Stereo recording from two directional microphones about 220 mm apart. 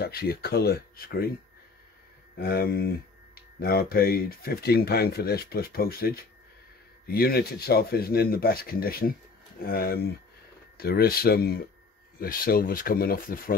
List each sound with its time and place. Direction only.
0.0 s speech: 45° left (ahead or behind)
2.3 s speech: 45° left (ahead or behind)